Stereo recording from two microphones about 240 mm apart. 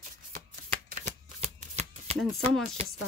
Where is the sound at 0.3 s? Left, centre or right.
Right.